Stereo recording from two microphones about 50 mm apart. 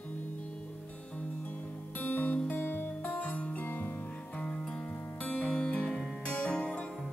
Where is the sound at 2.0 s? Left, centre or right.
Left.